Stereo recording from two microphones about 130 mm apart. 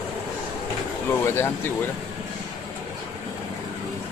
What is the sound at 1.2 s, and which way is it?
Speech, 20° left (ahead or behind).